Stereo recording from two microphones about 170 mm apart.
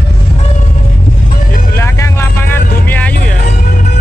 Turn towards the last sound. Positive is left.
turn(degrees=10)  # may be behind; listen again after turning